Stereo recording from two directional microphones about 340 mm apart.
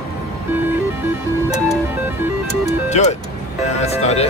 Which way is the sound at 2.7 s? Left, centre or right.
Centre.